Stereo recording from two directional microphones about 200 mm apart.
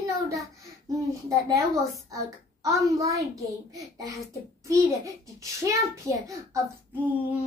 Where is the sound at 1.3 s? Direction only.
15° right (ahead or behind).